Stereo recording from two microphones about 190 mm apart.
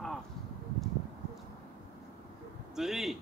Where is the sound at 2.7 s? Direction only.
Centre (ahead or behind).